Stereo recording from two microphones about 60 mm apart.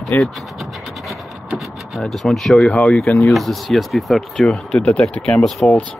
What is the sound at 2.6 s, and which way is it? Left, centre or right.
Speech, centre.